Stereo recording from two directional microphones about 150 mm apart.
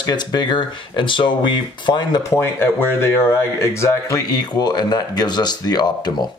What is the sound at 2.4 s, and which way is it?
Speech, 15° left (ahead or behind).